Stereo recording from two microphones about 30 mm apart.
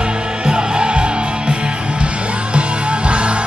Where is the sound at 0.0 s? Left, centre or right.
Right.